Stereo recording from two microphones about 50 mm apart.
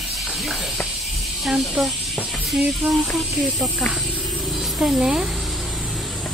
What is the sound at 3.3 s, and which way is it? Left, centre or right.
Speech, centre.